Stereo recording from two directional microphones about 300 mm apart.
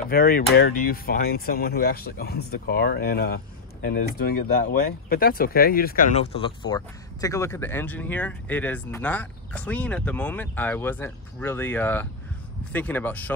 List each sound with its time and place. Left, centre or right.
0.1 s speech: left; by 13.3 s centre